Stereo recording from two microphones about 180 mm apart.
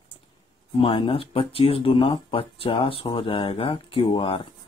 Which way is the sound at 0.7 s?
30° left (ahead or behind).